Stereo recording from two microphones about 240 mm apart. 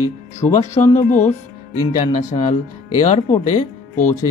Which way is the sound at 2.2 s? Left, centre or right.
Left.